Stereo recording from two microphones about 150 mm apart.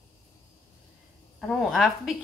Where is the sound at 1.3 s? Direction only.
5° left (ahead or behind).